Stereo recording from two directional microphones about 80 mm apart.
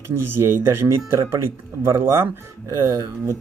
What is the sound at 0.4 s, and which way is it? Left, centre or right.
Speech, right.